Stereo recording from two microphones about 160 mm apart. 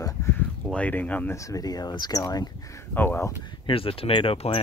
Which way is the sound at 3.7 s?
35° left (ahead or behind).